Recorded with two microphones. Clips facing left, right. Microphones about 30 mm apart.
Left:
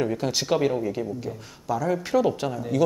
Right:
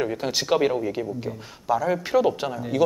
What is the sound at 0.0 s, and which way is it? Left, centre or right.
Speech, centre.